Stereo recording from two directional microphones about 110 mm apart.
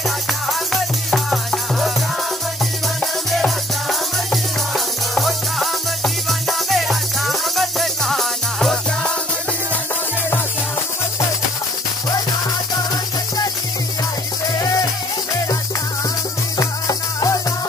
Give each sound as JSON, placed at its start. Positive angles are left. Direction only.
{"t": 1.1, "sound": "music", "side_deg": 0}
{"t": 3.0, "sound": "music", "side_deg": 0}
{"t": 16.5, "sound": "music", "side_deg": 30}